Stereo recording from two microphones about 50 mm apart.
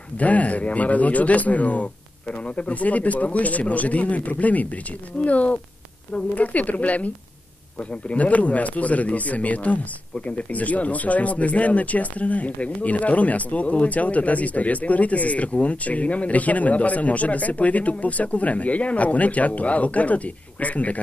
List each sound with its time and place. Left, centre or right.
0.2 s speech: left